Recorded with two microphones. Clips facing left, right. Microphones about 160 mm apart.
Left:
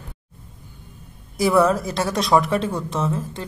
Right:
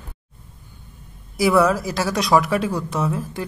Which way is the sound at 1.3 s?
Centre (ahead or behind).